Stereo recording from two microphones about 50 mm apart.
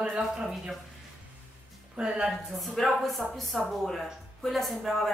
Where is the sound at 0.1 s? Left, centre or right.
Centre.